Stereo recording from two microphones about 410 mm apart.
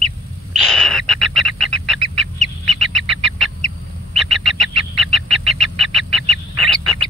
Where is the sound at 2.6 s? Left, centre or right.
Centre.